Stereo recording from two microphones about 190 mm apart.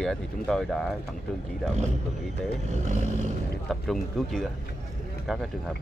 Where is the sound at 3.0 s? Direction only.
40° right (ahead or behind).